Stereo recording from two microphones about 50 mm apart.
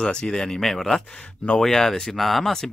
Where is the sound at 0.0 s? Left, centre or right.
Centre.